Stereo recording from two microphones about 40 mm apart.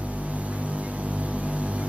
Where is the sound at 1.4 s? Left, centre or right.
Right.